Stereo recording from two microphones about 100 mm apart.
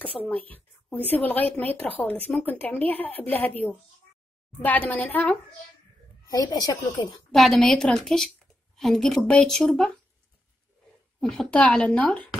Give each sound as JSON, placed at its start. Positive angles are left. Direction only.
{"t": 0.2, "sound": "speech", "side_deg": 15}
{"t": 6.2, "sound": "speech", "side_deg": 40}
{"t": 7.3, "sound": "a woman's voice", "side_deg": 0}
{"t": 11.1, "sound": "speech", "side_deg": 5}